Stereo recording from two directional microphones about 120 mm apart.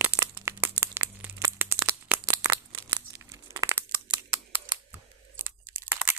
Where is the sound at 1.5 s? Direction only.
15° right (ahead or behind).